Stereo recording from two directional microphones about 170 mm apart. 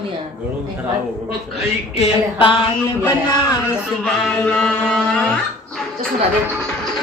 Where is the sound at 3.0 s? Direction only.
25° left (ahead or behind).